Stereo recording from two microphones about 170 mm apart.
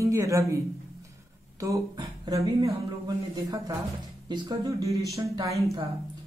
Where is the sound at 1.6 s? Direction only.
20° right (ahead or behind).